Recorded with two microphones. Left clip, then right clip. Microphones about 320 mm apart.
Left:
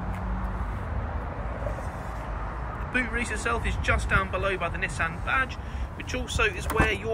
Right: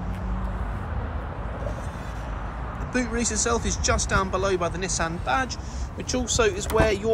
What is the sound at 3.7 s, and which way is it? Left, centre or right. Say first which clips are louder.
Speech: right 2 dB; right.